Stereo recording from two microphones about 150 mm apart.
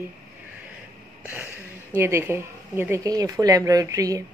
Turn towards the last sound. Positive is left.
turn(degrees=-25)  # may be behind; listen again after turning